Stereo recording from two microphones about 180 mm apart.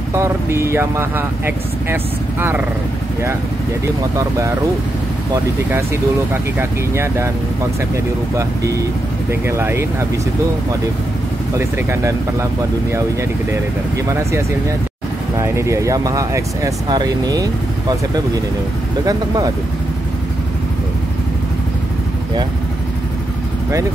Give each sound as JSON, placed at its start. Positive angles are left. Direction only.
{"t": 0.1, "sound": "speech", "side_deg": -15}
{"t": 6.3, "sound": "speech", "side_deg": -15}
{"t": 11.5, "sound": "speech", "side_deg": -15}